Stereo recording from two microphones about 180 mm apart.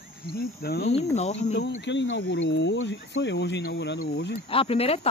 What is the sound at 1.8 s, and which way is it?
Speech, 80° left.